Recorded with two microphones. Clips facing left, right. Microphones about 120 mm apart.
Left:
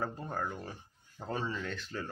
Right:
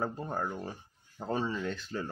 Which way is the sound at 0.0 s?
20° right (ahead or behind).